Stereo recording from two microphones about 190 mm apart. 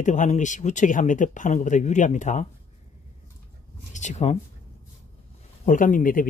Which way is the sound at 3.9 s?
40° left (ahead or behind).